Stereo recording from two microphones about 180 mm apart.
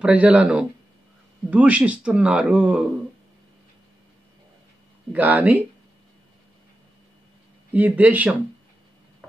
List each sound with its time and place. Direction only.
0.0 s speech: 5° right (ahead or behind)
5.1 s speech: 10° right (ahead or behind)
7.7 s speech: 10° right (ahead or behind)